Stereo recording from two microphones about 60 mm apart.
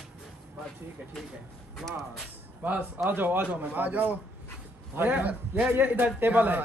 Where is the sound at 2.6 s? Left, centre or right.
Right.